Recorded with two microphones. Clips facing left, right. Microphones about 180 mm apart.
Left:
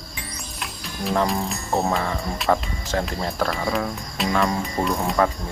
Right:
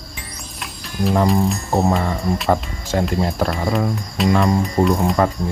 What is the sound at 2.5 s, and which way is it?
Speech, 10° right (ahead or behind).